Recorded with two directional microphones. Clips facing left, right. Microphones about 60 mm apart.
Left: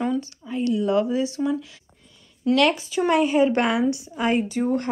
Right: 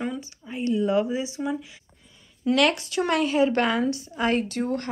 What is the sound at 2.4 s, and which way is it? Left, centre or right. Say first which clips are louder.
A woman's voice: left 2 dB; centre.